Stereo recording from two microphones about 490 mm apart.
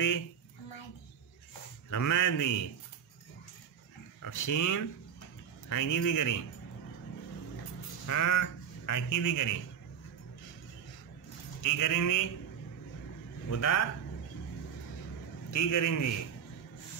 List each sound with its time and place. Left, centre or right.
1.9 s speech: left
4.2 s speech: left
8.1 s speech: left
11.6 s speech: left
13.5 s speech: left
15.5 s speech: left